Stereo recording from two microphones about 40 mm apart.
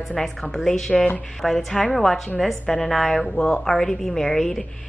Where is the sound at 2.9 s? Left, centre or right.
Centre.